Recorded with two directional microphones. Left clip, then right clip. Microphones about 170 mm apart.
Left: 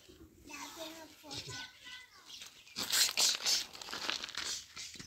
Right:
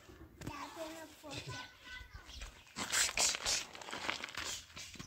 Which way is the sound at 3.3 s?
10° right (ahead or behind).